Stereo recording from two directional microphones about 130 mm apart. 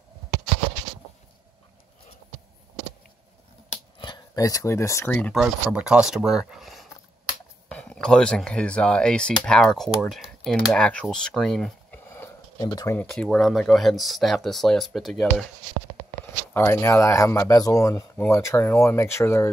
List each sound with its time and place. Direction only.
4.0 s speech: 30° left (ahead or behind)
5.3 s speech: 5° right (ahead or behind)
12.5 s speech: 30° left (ahead or behind)
12.9 s speech: 10° left (ahead or behind)
16.5 s speech: 20° left (ahead or behind)